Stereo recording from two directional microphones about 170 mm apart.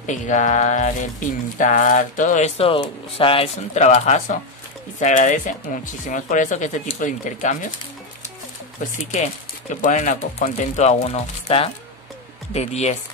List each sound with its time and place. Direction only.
0.0 s speech: 45° left (ahead or behind)
9.1 s speech: 40° left (ahead or behind)